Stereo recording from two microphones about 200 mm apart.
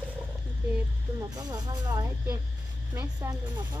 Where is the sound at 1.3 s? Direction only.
20° right (ahead or behind).